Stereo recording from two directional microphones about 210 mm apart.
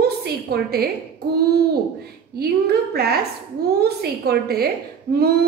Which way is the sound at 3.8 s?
50° right (ahead or behind).